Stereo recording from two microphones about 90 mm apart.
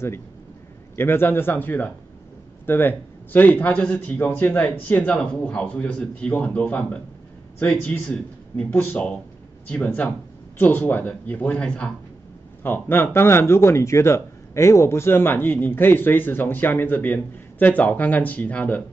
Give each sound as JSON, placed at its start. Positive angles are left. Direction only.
{"t": 0.9, "sound": "a man's voice", "side_deg": 25}
{"t": 10.6, "sound": "a man's voice", "side_deg": 25}
{"t": 12.6, "sound": "speech", "side_deg": 25}